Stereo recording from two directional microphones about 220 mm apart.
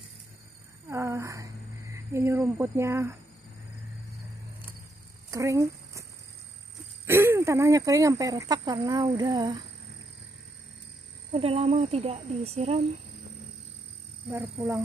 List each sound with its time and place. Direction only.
0.8 s speech: 15° right (ahead or behind)
5.3 s speech: 15° right (ahead or behind)
7.1 s speech: 10° right (ahead or behind)
11.3 s speech: 25° right (ahead or behind)
14.3 s speech: 10° right (ahead or behind)